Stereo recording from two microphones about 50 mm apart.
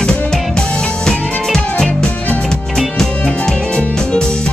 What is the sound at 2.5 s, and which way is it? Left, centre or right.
Music, centre.